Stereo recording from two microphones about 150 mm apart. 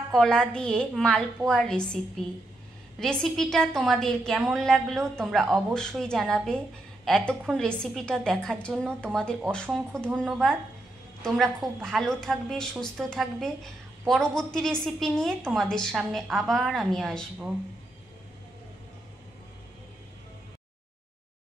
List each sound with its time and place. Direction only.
0.1 s a woman's voice: 5° left (ahead or behind)
3.0 s a woman's voice: 5° left (ahead or behind)